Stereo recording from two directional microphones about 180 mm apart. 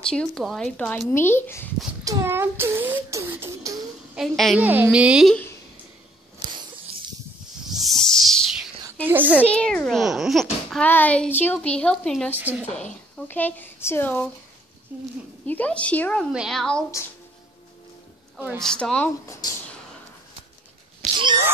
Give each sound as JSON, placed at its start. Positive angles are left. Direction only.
{"t": 0.0, "sound": "speech", "side_deg": 5}
{"t": 2.0, "sound": "beatboxing", "side_deg": -15}
{"t": 4.1, "sound": "beatboxing", "side_deg": 0}
{"t": 5.3, "sound": "speech", "side_deg": 10}
{"t": 7.6, "sound": "snake", "side_deg": 0}
{"t": 9.0, "sound": "beatboxing", "side_deg": -10}
{"t": 9.4, "sound": "a child's voice", "side_deg": 5}
{"t": 12.4, "sound": "beatboxing", "side_deg": -10}
{"t": 13.3, "sound": "a child's voice", "side_deg": 10}
{"t": 15.4, "sound": "a child's voice", "side_deg": 10}
{"t": 18.6, "sound": "a child's voice", "side_deg": 5}
{"t": 21.0, "sound": "a sound", "side_deg": -40}